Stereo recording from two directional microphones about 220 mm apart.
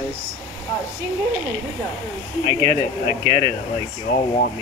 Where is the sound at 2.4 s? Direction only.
20° right (ahead or behind).